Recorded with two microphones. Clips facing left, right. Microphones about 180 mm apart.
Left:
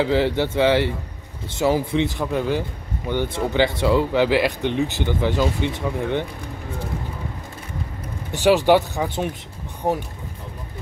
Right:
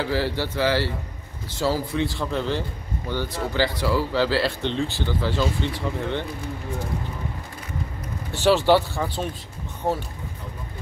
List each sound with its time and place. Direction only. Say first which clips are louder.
0.0 s speech: left 5 dB; 20° left (ahead or behind)
8.3 s speech: left 2 dB; 15° left (ahead or behind)